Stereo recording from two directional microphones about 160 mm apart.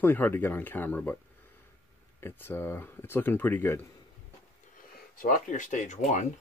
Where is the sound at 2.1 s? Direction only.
15° left (ahead or behind).